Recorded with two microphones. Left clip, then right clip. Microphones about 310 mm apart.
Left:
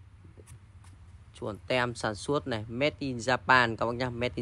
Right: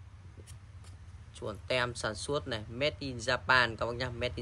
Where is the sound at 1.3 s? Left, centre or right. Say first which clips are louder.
Left 3 dB; centre.